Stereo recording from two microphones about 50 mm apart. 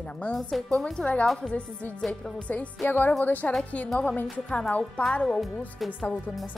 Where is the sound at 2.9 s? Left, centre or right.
Left.